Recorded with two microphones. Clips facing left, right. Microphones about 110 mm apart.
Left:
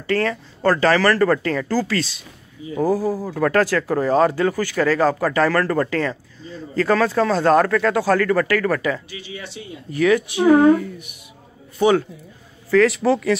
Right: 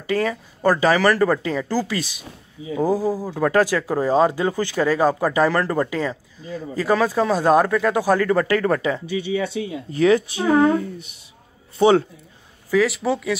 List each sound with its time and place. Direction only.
0.0 s speech: 15° right (ahead or behind)
12.7 s speech: centre (ahead or behind)